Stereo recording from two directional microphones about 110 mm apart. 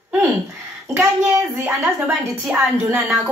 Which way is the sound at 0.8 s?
20° right (ahead or behind).